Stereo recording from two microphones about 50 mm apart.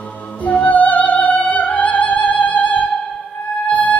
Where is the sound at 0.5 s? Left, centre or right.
Left.